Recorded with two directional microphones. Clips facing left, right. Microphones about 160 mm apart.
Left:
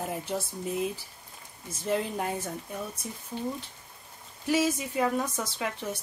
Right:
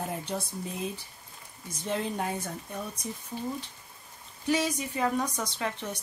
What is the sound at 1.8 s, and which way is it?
Speech, centre (ahead or behind).